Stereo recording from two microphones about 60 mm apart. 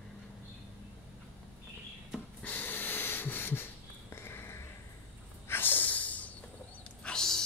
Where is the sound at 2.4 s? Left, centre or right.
Left.